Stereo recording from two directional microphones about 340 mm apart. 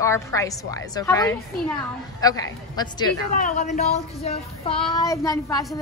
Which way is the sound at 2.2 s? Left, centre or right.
Centre.